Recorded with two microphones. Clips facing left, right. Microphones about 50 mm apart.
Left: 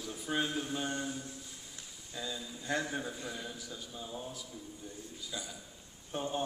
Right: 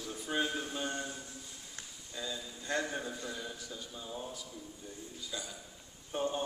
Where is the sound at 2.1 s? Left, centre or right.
Centre.